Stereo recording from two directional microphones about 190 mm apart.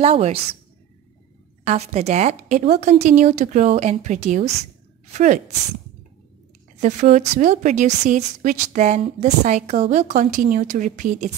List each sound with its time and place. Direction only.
0.0 s a woman's voice: 30° right (ahead or behind)
1.6 s a woman's voice: 35° right (ahead or behind)
6.8 s a woman's voice: 40° right (ahead or behind)